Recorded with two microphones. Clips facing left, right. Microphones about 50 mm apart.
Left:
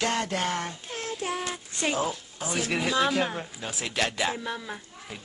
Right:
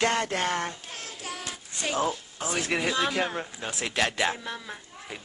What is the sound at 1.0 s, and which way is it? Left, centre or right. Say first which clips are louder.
Child singing: left 8 dB; left.